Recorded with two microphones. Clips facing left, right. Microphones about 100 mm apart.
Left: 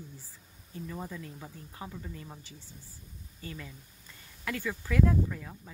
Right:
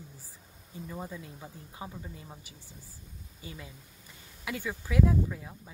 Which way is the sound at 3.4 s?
10° right (ahead or behind).